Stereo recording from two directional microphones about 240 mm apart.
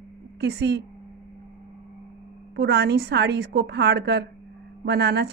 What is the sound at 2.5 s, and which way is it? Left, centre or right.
A woman's voice, right.